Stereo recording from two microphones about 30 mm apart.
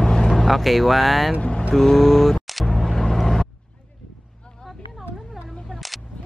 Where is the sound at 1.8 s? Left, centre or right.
Centre.